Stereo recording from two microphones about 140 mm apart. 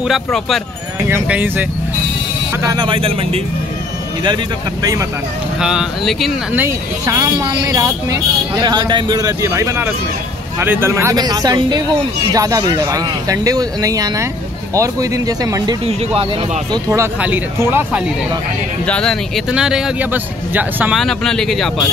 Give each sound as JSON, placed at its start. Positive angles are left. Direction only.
{"t": 0.1, "sound": "speech", "side_deg": 0}
{"t": 1.0, "sound": "speech", "side_deg": -15}
{"t": 2.6, "sound": "speech", "side_deg": -30}
{"t": 5.6, "sound": "speech", "side_deg": -5}
{"t": 6.5, "sound": "speech", "side_deg": -15}
{"t": 8.6, "sound": "speech", "side_deg": -35}
{"t": 15.9, "sound": "speech", "side_deg": -45}
{"t": 16.7, "sound": "speech", "side_deg": -20}
{"t": 18.9, "sound": "speech", "side_deg": 5}
{"t": 19.5, "sound": "speech", "side_deg": -5}
{"t": 20.9, "sound": "speech", "side_deg": 0}